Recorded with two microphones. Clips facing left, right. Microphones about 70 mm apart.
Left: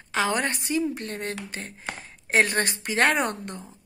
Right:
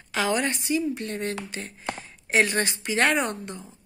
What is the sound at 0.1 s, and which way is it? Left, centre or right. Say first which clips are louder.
Speech: even; left.